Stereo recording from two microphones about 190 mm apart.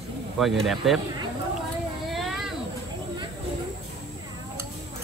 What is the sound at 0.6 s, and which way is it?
Speech, centre (ahead or behind).